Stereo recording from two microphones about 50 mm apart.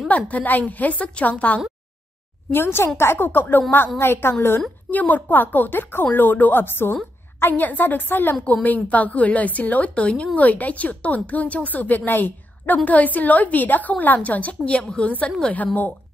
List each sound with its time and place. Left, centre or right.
0.1 s a woman's voice: left
2.5 s a woman's voice: left
4.0 s a woman's voice: left
4.9 s a woman's voice: left
7.6 s a woman's voice: left
8.6 s a woman's voice: left